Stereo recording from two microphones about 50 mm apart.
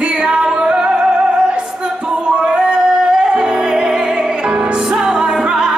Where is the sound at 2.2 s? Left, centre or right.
Centre.